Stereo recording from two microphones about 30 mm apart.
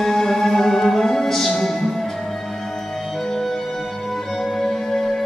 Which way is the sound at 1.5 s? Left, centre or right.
Left.